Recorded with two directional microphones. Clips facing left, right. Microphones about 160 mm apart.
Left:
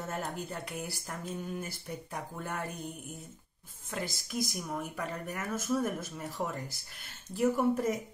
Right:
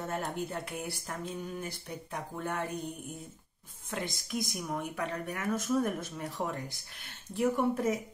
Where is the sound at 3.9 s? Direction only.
Centre (ahead or behind).